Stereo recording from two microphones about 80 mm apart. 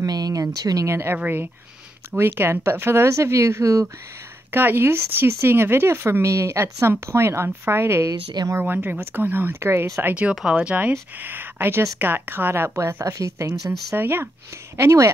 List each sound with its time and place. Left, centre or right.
0.0 s a sound: right
1.1 s speech: right
4.5 s speech: right
10.5 s speech: centre; by 13.6 s right
13.9 s speech: right
14.8 s speech: right